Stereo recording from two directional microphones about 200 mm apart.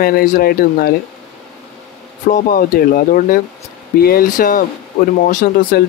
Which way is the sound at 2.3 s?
45° left (ahead or behind).